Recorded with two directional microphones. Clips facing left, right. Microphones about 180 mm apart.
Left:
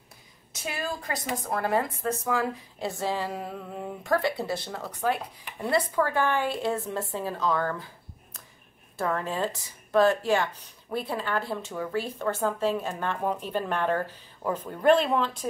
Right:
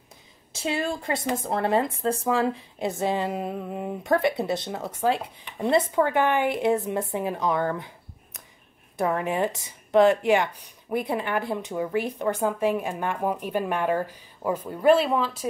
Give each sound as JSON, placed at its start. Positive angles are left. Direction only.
{"t": 0.5, "sound": "a woman's voice", "side_deg": -25}